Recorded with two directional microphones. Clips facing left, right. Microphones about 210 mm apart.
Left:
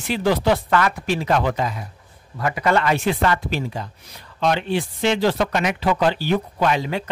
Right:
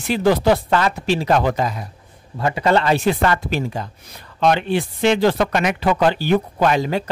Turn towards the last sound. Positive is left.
turn(degrees=-40)  # may be behind; listen again after turning